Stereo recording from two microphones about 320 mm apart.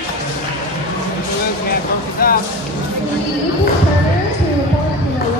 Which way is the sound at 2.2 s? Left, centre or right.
Left.